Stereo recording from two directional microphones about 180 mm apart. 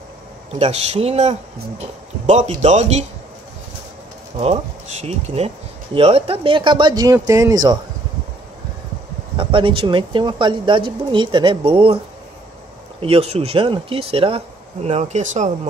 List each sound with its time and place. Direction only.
0.6 s speech: 35° right (ahead or behind)
5.0 s speech: 35° right (ahead or behind); by 7.8 s 20° right (ahead or behind)
9.4 s speech: 30° right (ahead or behind)
13.0 s speech: 35° right (ahead or behind)